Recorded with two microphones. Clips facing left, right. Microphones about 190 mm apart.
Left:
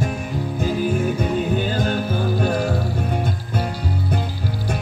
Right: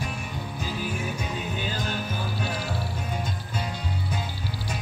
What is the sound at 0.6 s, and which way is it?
Music, 50° left (ahead or behind).